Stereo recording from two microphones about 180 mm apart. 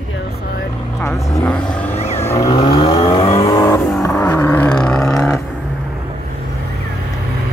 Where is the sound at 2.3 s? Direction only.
20° left (ahead or behind).